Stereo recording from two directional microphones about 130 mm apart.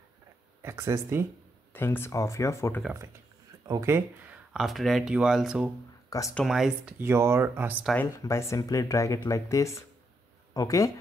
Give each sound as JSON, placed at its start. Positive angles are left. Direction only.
{"t": 0.6, "sound": "speech", "side_deg": -20}
{"t": 1.7, "sound": "speech", "side_deg": 20}
{"t": 3.6, "sound": "speech", "side_deg": -25}
{"t": 4.3, "sound": "speech", "side_deg": 0}
{"t": 6.0, "sound": "a sound", "side_deg": 25}
{"t": 6.3, "sound": "speech", "side_deg": 0}
{"t": 7.0, "sound": "speech", "side_deg": -20}
{"t": 8.2, "sound": "speech", "side_deg": 20}